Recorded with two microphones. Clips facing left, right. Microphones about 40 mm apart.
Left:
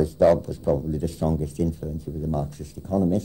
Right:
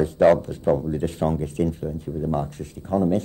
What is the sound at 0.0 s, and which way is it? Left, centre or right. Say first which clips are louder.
Speech: right 2 dB; right.